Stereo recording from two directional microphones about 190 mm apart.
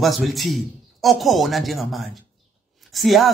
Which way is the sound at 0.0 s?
Centre (ahead or behind).